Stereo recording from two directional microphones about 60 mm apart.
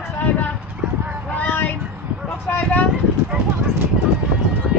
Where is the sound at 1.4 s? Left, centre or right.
Left.